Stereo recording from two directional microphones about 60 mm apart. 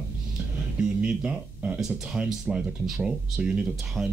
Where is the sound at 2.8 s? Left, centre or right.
Centre.